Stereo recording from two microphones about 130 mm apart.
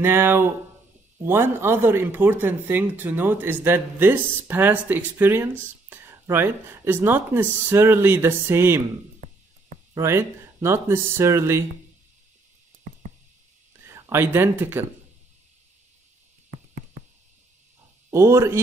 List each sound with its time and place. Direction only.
0.0 s speech: 15° right (ahead or behind)
9.9 s speech: 20° right (ahead or behind)
13.8 s speech: 20° right (ahead or behind)
18.1 s speech: 20° right (ahead or behind)